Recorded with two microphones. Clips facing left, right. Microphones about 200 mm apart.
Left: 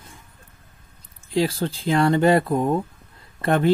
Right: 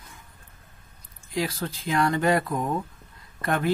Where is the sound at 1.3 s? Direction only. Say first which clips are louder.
Left 7 dB; 30° left (ahead or behind).